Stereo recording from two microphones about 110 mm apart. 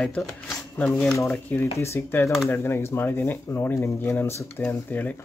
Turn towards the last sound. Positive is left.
turn(degrees=20)  # may be behind; listen again after turning